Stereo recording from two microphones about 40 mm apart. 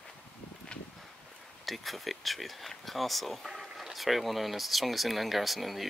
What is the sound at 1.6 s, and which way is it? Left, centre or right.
Speech, centre.